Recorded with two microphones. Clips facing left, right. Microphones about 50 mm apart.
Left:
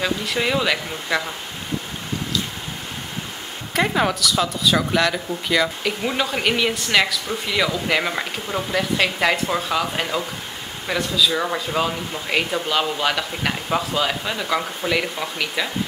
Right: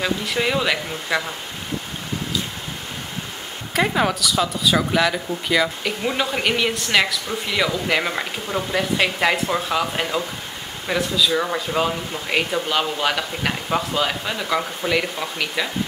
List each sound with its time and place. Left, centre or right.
0.0 s speech: centre
3.7 s speech: centre